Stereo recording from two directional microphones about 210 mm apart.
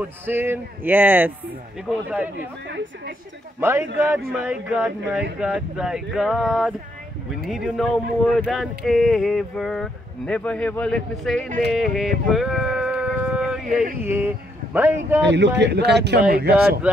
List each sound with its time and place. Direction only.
0.0 s speech: 10° right (ahead or behind)
3.6 s speech: 10° right (ahead or behind)
11.7 s a sound: centre (ahead or behind)
14.0 s speech: 10° right (ahead or behind)
15.2 s a man's voice: 55° right (ahead or behind)